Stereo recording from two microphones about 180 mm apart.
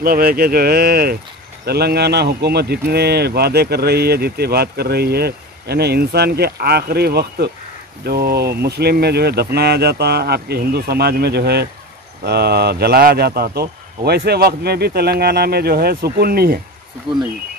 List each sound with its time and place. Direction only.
0.0 s a man's voice: 55° right (ahead or behind)
17.1 s speech: 25° right (ahead or behind)